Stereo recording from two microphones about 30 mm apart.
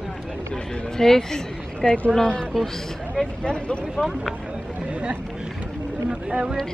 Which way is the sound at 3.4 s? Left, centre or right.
Left.